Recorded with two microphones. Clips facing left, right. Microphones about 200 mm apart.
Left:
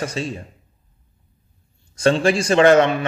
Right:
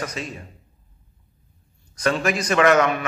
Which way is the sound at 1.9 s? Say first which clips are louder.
Left 5 dB; 30° left (ahead or behind).